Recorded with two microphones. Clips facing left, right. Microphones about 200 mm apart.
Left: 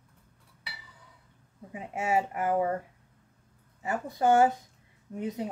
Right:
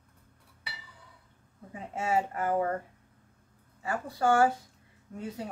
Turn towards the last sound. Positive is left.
turn(degrees=20)  # may be behind; listen again after turning